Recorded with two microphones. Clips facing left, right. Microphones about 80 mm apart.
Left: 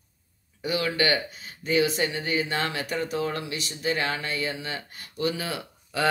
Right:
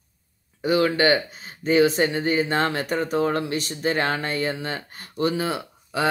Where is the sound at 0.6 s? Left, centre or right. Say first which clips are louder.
Right 6 dB; right.